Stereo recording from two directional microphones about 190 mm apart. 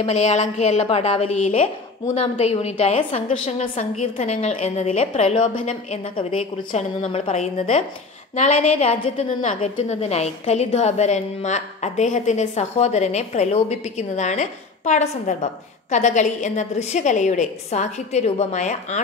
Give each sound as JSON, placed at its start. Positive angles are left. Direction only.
{"t": 0.0, "sound": "a woman's voice", "side_deg": 35}